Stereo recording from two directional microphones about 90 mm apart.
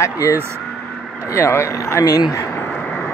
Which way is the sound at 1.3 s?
30° left (ahead or behind).